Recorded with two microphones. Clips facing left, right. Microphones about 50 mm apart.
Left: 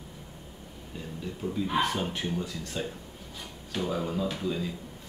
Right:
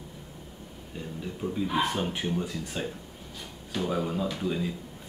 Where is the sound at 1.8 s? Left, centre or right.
Centre.